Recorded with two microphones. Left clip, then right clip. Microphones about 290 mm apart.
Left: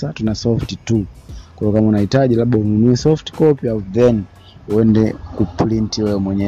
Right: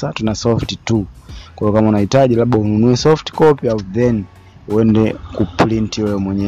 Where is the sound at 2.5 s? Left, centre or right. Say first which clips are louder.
Right 1 dB; right.